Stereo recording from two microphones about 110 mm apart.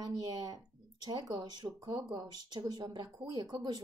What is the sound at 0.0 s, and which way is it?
Speech, 35° right (ahead or behind).